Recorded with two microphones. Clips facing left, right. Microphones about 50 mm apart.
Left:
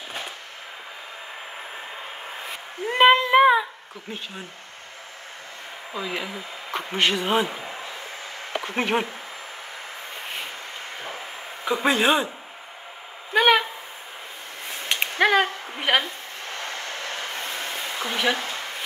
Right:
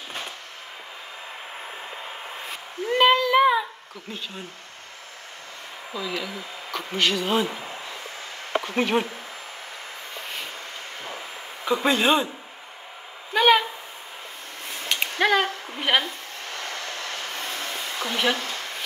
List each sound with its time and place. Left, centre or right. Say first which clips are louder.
2.8 s child singing: left 2 dB; left
5.9 s speech: even; left
8.6 s speech: even; left
11.6 s speech: even; centre
13.3 s a sound: even; centre
15.0 s speech: left 2 dB; left
17.2 s a sound: left 1 dB; left
18.1 s speech: even; centre